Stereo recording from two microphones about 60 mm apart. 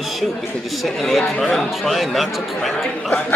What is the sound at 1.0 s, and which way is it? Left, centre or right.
Speech, centre.